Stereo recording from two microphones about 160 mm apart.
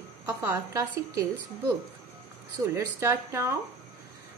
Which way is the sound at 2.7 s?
15° right (ahead or behind).